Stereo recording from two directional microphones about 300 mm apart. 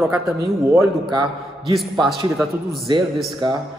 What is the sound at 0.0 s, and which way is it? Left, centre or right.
A man's voice, centre.